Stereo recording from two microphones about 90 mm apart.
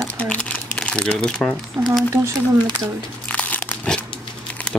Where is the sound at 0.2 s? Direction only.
15° left (ahead or behind).